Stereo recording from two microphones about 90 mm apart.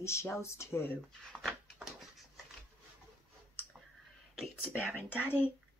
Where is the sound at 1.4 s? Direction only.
Centre (ahead or behind).